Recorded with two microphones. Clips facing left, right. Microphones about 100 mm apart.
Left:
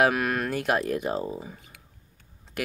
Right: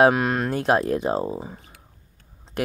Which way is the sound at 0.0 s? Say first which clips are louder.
Right 5 dB; 25° right (ahead or behind).